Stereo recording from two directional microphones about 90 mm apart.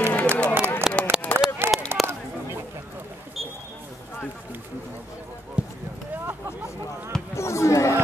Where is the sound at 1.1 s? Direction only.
10° right (ahead or behind).